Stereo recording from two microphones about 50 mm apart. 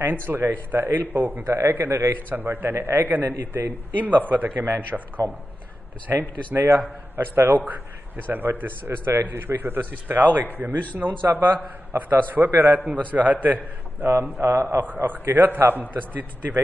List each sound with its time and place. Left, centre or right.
0.0 s a man's voice: right
7.3 s a man's voice: right
14.6 s a man's voice: right
14.9 s a man's voice: right